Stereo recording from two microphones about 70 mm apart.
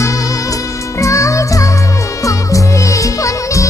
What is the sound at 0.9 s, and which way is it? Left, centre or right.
Music, left.